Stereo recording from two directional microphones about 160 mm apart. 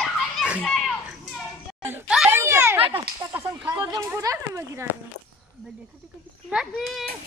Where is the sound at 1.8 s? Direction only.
10° right (ahead or behind).